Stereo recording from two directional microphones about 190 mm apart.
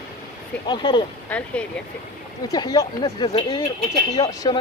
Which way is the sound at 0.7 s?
25° left (ahead or behind).